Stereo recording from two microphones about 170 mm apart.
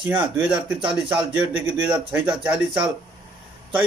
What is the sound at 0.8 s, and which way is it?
Speech, 30° right (ahead or behind).